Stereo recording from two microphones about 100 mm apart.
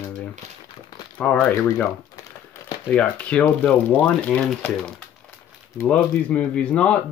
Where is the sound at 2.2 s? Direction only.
35° left (ahead or behind).